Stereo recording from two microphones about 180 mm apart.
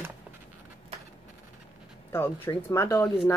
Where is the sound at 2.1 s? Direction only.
10° left (ahead or behind).